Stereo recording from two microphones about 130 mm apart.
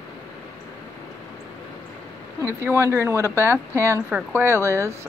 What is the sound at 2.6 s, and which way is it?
Speech, 20° right (ahead or behind).